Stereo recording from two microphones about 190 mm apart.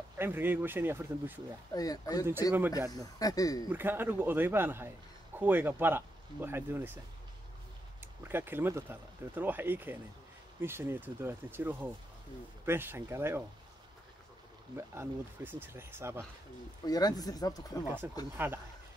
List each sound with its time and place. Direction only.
0.2 s a man's voice: 10° right (ahead or behind)
1.7 s speech: 20° left (ahead or behind)
3.7 s a man's voice: 10° right (ahead or behind)
8.2 s a man's voice: 10° right (ahead or behind)
14.8 s a man's voice: 15° right (ahead or behind)
16.8 s speech: 20° left (ahead or behind)
17.8 s a man's voice: 10° right (ahead or behind)